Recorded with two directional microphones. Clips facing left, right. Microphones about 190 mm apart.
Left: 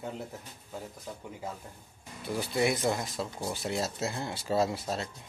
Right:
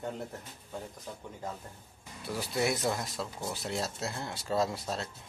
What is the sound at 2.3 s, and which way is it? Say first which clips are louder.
Speech: left 3 dB; centre (ahead or behind).